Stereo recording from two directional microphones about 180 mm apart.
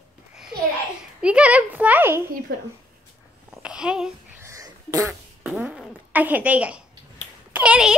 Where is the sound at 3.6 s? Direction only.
5° right (ahead or behind).